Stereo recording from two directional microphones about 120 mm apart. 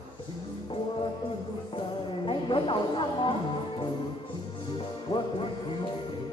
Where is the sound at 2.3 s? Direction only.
45° left (ahead or behind).